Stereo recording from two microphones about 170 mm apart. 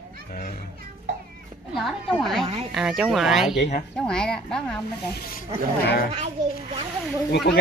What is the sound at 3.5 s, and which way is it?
Speech, 70° left (ahead or behind).